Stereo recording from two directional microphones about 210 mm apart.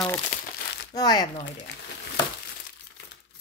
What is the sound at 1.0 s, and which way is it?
Speech, 20° left (ahead or behind).